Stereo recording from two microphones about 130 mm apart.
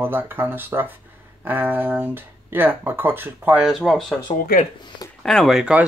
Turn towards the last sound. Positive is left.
turn(degrees=-5)  # may be behind; listen again after turning